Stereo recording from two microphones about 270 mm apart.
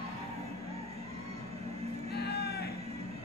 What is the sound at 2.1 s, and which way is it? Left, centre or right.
Music, left.